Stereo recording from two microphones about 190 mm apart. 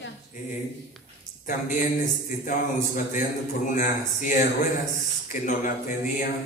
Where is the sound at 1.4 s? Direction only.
45° left (ahead or behind).